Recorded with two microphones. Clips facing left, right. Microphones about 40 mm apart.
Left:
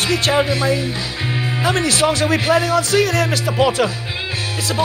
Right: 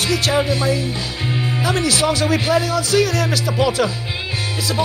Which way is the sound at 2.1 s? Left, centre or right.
Centre.